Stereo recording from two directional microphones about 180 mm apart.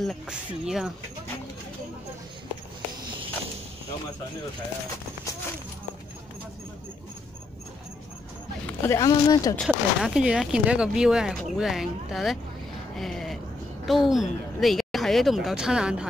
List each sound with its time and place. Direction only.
0.0 s speech: centre (ahead or behind)
8.6 s speech: 15° left (ahead or behind)
9.6 s speech: centre (ahead or behind)
12.9 s a sound: centre (ahead or behind)
13.8 s speech: centre (ahead or behind)